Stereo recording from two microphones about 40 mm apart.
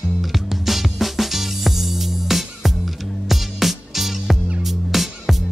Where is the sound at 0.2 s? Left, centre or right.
Centre.